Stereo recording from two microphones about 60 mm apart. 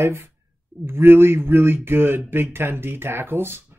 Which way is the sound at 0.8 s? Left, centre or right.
Right.